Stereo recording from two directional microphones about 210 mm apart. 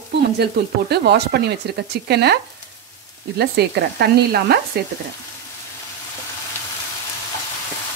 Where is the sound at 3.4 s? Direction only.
50° right (ahead or behind).